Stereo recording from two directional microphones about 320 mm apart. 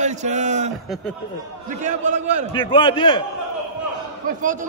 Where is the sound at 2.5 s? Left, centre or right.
Centre.